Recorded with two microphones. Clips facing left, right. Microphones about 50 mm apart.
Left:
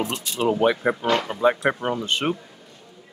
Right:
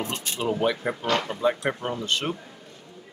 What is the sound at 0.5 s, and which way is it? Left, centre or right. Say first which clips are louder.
Speech: left 5 dB; centre.